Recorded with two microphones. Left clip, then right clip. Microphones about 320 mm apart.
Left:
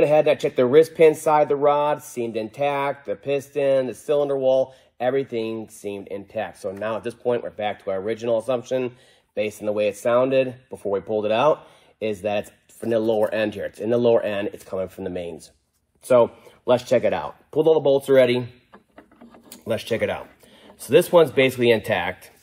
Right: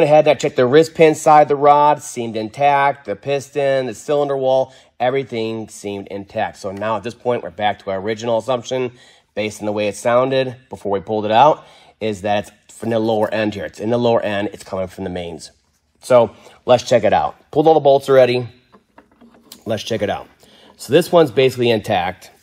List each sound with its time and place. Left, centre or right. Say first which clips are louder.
0.0 s speech: right 5 dB; right
19.7 s speech: right 3 dB; right